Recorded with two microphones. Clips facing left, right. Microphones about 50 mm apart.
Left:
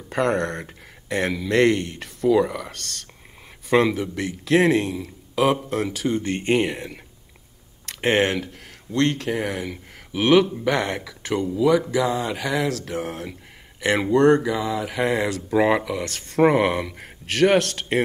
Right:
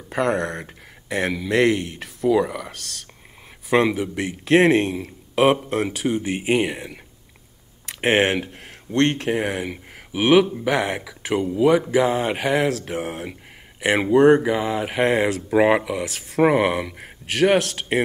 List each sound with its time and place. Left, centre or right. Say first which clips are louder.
0.1 s speech: even; centre
4.6 s speech: right 2 dB; right
4.9 s a man's voice: right 2 dB; right
5.7 s speech: right 2 dB; right
5.9 s speech: right 1 dB; centre
7.8 s a sound: right 1 dB; centre
8.9 s speech: right 2 dB; right
9.3 s speech: right 2 dB; right
10.1 s speech: right 1 dB; centre
11.5 s speech: right 2 dB; right
12.8 s speech: right 1 dB; centre
14.4 s speech: right 2 dB; right
15.2 s speech: right 2 dB; right; by 18.0 s centre